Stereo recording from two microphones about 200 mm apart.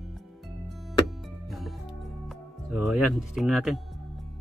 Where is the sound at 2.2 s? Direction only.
Centre (ahead or behind).